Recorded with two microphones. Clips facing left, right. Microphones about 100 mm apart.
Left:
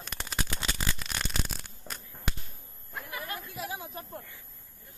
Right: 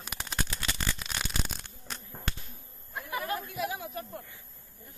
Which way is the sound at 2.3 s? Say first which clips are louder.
Left 1 dB; 10° left (ahead or behind).